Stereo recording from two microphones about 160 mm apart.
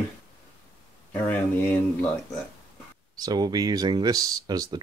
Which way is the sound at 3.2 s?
25° right (ahead or behind).